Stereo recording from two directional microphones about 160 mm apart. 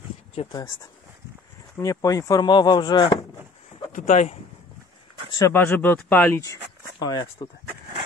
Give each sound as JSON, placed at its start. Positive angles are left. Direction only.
{"t": 0.5, "sound": "speech", "side_deg": 25}
{"t": 1.8, "sound": "speech", "side_deg": 20}
{"t": 4.0, "sound": "speech", "side_deg": 45}
{"t": 5.5, "sound": "speech", "side_deg": 10}